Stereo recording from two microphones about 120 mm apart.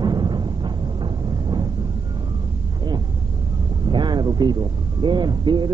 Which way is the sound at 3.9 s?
40° right (ahead or behind).